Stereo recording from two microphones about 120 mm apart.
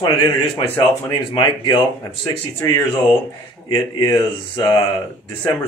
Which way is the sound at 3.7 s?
40° left (ahead or behind).